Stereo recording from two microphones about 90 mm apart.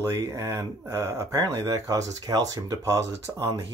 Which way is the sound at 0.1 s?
35° right (ahead or behind).